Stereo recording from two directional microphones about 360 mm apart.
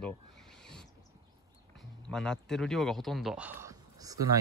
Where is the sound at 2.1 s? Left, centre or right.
Centre.